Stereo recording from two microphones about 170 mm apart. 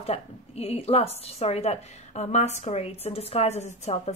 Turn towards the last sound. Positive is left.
turn(degrees=40)  # may be behind; listen again after turning